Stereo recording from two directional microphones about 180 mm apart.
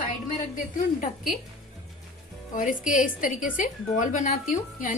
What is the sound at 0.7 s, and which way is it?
Speech, 50° left (ahead or behind).